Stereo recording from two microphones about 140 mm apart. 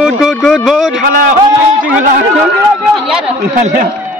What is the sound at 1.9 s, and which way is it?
Speech, 65° right (ahead or behind).